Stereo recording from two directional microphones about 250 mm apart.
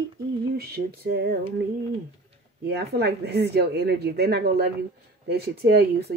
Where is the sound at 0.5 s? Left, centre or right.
Right.